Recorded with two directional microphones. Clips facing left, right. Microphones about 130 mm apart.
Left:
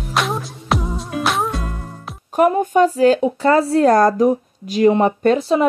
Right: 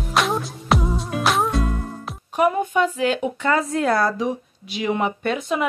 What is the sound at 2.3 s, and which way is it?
Speech, 45° left (ahead or behind).